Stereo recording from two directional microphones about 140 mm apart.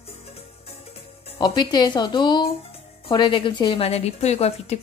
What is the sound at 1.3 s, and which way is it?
A woman's voice, 30° left (ahead or behind).